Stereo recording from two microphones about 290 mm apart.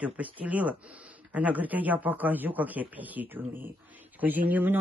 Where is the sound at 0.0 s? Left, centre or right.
Centre.